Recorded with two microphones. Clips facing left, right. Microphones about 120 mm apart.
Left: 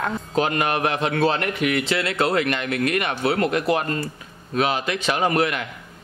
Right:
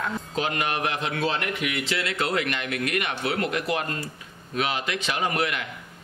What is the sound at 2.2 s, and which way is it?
A man's voice, 40° left (ahead or behind).